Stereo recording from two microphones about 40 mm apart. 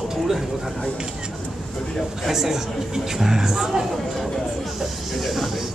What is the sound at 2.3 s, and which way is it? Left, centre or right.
Speech, centre.